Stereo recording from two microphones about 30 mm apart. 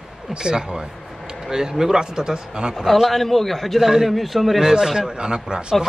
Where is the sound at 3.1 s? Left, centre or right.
Centre.